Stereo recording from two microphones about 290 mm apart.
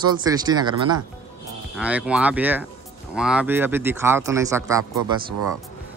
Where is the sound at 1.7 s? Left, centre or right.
Centre.